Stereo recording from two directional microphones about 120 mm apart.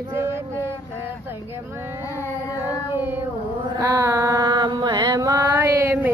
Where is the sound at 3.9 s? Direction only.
25° right (ahead or behind).